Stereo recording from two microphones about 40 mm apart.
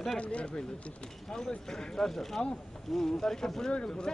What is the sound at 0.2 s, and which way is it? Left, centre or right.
Speech, left.